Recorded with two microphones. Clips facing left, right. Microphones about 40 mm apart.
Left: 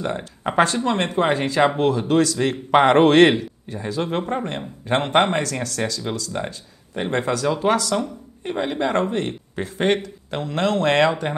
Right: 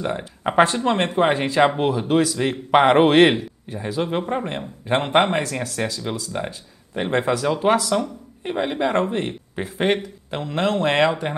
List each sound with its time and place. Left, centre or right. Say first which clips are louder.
0.2 s a man's voice: right 2 dB; centre
0.8 s a man's voice: right 1 dB; right; by 5.4 s centre
5.4 s speech: even; centre
6.4 s speech: even; centre
7.0 s a man's voice: right 1 dB; centre
8.5 s a man's voice: right 1 dB; centre